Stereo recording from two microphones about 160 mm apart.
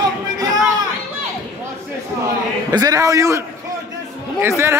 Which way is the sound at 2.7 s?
20° right (ahead or behind).